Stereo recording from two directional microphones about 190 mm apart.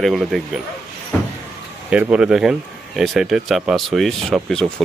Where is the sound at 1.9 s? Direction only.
5° right (ahead or behind).